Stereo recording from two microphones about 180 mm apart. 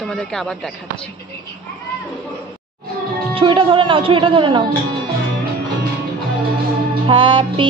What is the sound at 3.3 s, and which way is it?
Speech, 30° right (ahead or behind).